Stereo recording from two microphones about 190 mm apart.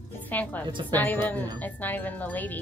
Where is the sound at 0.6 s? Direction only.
25° right (ahead or behind).